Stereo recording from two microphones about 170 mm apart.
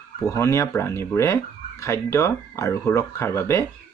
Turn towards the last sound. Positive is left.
turn(degrees=15)  # may be behind; listen again after turning